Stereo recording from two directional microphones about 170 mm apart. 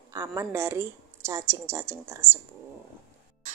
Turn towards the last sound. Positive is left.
turn(degrees=-45)  # may be behind; listen again after turning